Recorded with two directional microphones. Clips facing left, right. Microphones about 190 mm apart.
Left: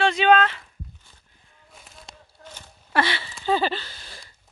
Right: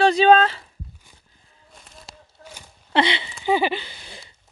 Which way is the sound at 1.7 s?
Centre (ahead or behind).